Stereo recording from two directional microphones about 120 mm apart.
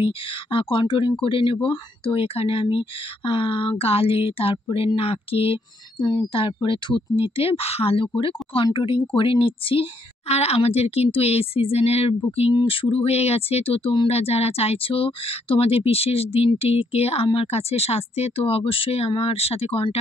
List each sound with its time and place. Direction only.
0.0 s speech: 50° left (ahead or behind)
12.5 s speech: 45° left (ahead or behind)